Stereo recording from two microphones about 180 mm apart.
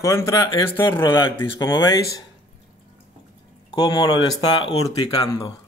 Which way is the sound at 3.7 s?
25° left (ahead or behind).